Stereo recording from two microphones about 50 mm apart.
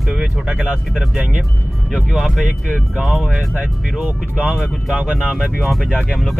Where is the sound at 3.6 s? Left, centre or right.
Right.